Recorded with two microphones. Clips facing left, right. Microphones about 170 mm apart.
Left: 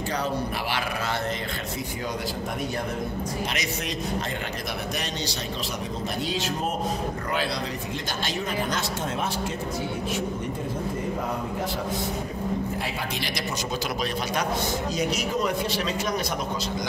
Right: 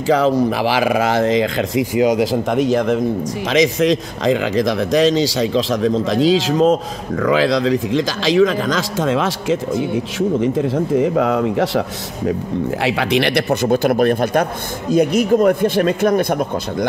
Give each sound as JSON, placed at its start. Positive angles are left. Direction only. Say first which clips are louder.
{"t": 0.1, "sound": "speech", "louder": "right 16 dB", "side_deg": -90}
{"t": 11.0, "sound": "speech", "louder": "right 13 dB", "side_deg": -90}
{"t": 12.8, "sound": "speech", "louder": "right 14 dB", "side_deg": -80}